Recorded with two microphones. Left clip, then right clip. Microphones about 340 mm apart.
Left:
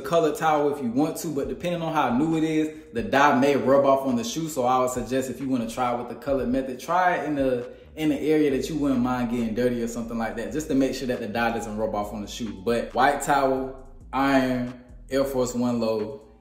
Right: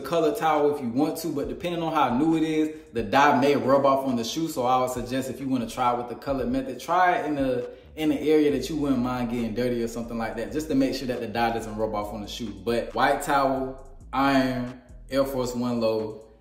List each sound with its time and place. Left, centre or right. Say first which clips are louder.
0.1 s a man's voice: left 1 dB; centre